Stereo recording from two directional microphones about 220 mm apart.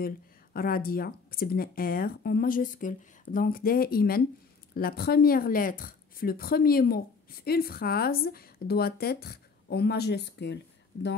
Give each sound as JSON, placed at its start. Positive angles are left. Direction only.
{"t": 0.0, "sound": "speech", "side_deg": 40}